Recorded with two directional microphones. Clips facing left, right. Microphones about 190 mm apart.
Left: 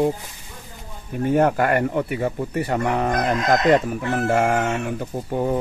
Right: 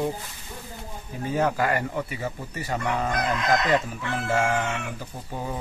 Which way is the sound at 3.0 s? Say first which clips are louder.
Left 3 dB; 45° left (ahead or behind).